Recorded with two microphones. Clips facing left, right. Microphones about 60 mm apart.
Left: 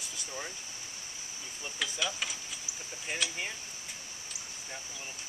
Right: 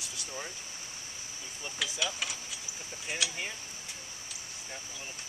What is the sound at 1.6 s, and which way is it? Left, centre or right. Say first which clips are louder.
Speech: even; centre.